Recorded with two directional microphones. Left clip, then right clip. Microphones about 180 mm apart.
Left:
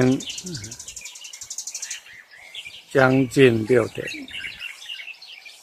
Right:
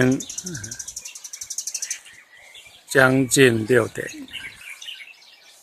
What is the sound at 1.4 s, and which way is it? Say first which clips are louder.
Cricket: right 4 dB; 50° right (ahead or behind).